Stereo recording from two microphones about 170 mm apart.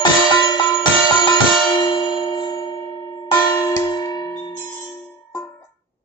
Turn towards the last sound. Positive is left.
turn(degrees=20)  # may be behind; listen again after turning